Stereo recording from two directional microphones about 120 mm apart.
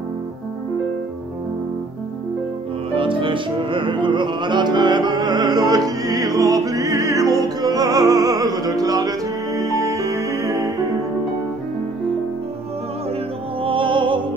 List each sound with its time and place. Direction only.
2.9 s music: 45° right (ahead or behind); by 10.7 s 25° right (ahead or behind)
13.6 s music: 45° right (ahead or behind)